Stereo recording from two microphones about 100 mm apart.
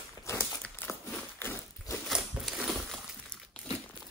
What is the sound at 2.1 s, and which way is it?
Crumpling, centre (ahead or behind).